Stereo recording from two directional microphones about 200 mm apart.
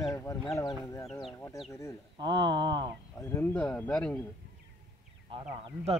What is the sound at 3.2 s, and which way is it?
Speech, 10° left (ahead or behind).